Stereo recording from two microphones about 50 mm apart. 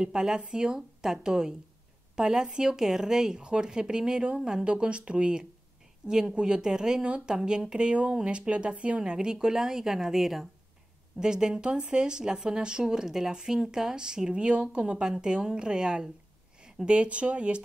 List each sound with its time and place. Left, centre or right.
0.0 s speech: centre
4.4 s speech: centre
4.6 s speech: right